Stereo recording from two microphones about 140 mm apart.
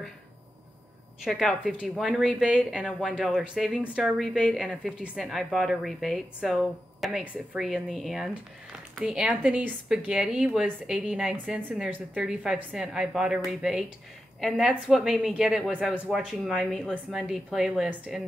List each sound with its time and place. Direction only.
1.2 s speech: 5° right (ahead or behind)
14.9 s speech: 5° right (ahead or behind)